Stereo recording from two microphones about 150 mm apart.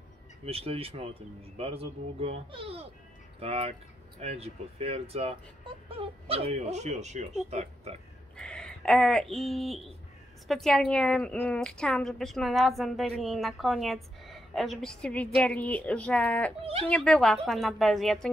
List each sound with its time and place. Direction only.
0.5 s speech: 40° right (ahead or behind)
8.4 s a woman's voice: 5° left (ahead or behind)